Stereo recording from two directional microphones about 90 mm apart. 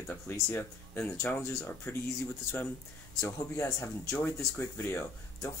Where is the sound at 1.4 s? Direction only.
35° left (ahead or behind).